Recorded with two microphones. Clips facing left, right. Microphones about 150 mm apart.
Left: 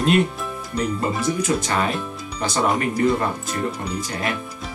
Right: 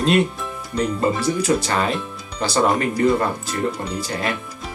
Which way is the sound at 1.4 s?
35° right (ahead or behind).